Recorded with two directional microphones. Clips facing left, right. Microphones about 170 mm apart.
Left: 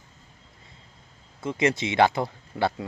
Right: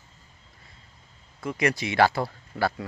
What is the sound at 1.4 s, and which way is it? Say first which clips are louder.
Speech: left 2 dB; 25° left (ahead or behind).